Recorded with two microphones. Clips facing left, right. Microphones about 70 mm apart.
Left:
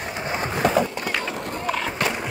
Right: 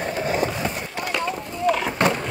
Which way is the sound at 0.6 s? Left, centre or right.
Left.